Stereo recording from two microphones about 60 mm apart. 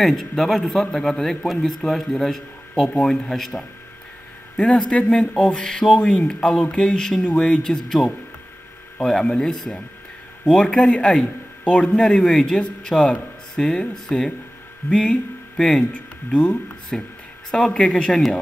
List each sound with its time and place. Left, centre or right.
0.0 s a man's voice: centre
4.6 s speech: centre